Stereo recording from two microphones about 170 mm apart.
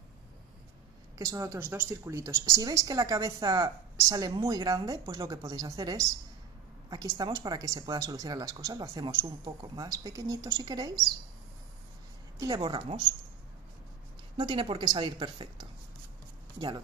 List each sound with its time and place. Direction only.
1.1 s a woman's voice: 20° right (ahead or behind)
12.4 s a woman's voice: 25° right (ahead or behind)
14.3 s a woman's voice: 30° right (ahead or behind)
16.5 s a woman's voice: 25° right (ahead or behind)